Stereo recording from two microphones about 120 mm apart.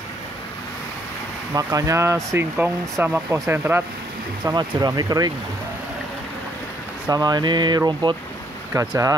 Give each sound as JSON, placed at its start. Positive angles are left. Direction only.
{"t": 1.5, "sound": "speech", "side_deg": -30}
{"t": 4.5, "sound": "speech", "side_deg": -35}
{"t": 7.1, "sound": "speech", "side_deg": -35}
{"t": 8.7, "sound": "speech", "side_deg": -25}